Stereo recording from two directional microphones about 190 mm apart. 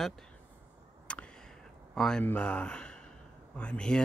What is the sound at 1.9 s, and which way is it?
Speech, 5° left (ahead or behind).